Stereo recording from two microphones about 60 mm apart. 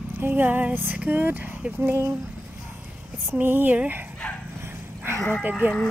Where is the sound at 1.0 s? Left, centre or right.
Right.